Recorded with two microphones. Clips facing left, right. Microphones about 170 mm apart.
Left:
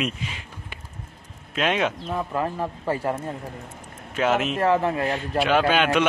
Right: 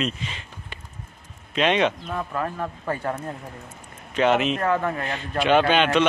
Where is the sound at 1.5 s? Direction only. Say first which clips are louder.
Right 3 dB; 5° left (ahead or behind).